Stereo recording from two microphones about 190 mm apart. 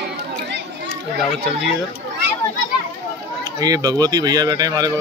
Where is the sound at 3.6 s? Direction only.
20° right (ahead or behind).